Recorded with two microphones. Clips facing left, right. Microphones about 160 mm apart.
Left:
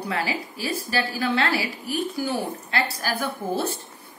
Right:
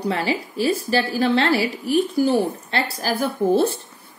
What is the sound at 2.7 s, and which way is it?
Speech, 35° right (ahead or behind).